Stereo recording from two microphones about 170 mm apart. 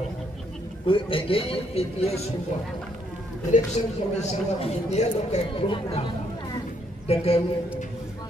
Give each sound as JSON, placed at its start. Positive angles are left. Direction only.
{"t": 0.8, "sound": "speech", "side_deg": 30}
{"t": 3.5, "sound": "speech", "side_deg": 40}
{"t": 7.1, "sound": "speech", "side_deg": 35}